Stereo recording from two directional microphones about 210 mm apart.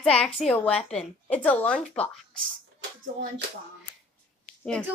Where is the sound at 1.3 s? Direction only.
10° left (ahead or behind).